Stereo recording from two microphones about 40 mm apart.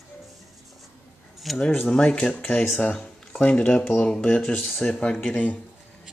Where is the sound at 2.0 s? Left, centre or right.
Left.